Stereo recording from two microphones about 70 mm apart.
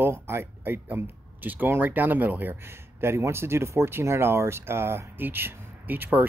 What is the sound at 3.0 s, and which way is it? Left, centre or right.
Speech, right.